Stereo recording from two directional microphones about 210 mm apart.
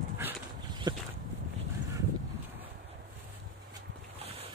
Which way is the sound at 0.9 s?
20° right (ahead or behind).